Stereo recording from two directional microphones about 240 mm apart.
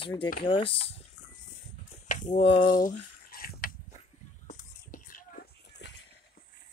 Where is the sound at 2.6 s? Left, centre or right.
Left.